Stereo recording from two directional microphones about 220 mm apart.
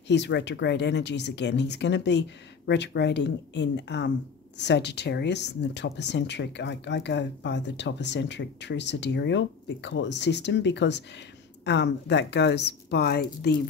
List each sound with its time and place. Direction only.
0.1 s speech: 50° left (ahead or behind)